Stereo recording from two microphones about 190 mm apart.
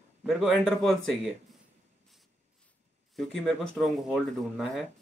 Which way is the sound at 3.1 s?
Centre (ahead or behind).